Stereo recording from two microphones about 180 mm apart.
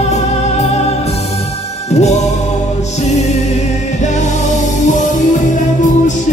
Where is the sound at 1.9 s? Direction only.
40° left (ahead or behind).